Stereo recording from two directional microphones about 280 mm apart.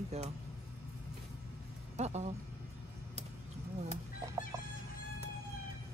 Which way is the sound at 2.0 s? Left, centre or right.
Right.